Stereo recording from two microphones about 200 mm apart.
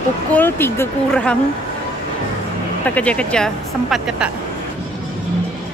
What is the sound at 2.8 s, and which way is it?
Speech, 5° left (ahead or behind).